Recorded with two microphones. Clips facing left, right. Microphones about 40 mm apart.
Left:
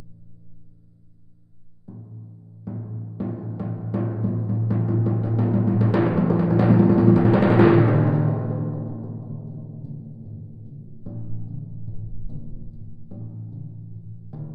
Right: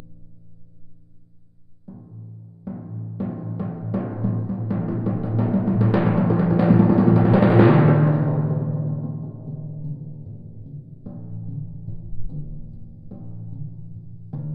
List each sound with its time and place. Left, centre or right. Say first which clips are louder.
1.9 s timpani: right 1 dB; centre
4.4 s music: even; centre
13.3 s music: right 1 dB; centre
14.3 s music: right 4 dB; centre